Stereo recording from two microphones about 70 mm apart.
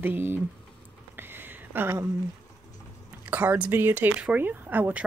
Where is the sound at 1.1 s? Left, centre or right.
Right.